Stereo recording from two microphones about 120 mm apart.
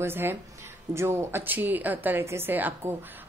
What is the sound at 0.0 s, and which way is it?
A woman's voice, 20° right (ahead or behind).